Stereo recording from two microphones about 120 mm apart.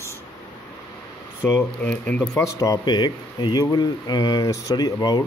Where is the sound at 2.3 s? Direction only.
25° left (ahead or behind).